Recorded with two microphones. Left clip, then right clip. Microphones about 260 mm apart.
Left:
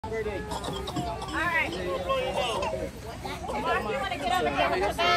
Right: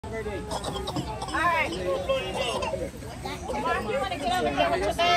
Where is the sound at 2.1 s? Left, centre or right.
Centre.